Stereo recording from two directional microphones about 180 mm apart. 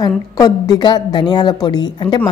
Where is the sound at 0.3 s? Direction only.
20° left (ahead or behind).